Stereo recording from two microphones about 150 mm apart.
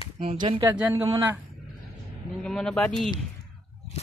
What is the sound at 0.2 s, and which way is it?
Speech, 35° right (ahead or behind).